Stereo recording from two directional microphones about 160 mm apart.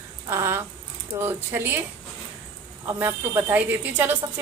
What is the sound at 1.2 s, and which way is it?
Speech, 15° right (ahead or behind).